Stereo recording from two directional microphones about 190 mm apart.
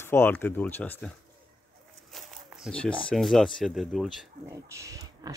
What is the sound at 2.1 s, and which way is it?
Speech, centre (ahead or behind).